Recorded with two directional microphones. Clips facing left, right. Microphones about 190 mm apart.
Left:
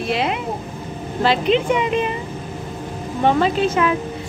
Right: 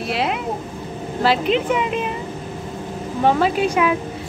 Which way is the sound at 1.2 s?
5° right (ahead or behind).